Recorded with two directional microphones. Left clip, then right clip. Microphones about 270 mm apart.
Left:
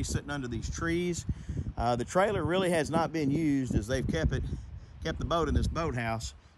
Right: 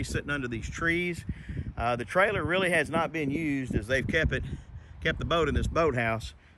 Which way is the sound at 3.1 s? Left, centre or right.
Left.